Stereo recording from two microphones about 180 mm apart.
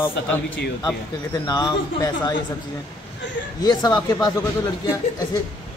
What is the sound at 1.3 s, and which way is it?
Speech, 20° left (ahead or behind).